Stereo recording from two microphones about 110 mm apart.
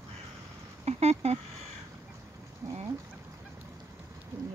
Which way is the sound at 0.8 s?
75° right (ahead or behind).